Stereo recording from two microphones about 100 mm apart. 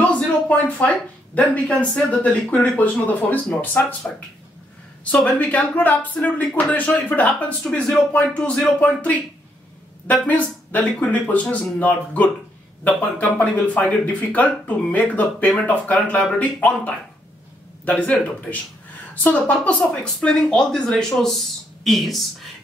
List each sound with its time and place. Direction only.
0.0 s speech: 15° left (ahead or behind)
5.1 s speech: 10° left (ahead or behind)
10.2 s speech: 15° left (ahead or behind)